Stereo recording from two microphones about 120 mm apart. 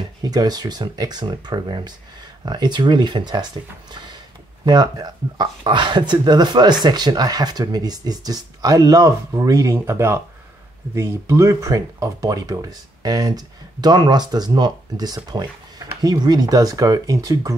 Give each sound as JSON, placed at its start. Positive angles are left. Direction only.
{"t": 0.2, "sound": "speech", "side_deg": -35}
{"t": 3.9, "sound": "a sound", "side_deg": -40}
{"t": 4.6, "sound": "speech", "side_deg": -35}